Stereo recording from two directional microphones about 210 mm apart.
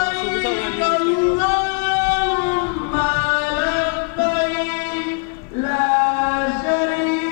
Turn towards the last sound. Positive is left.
turn(degrees=15)  # may be behind; listen again after turning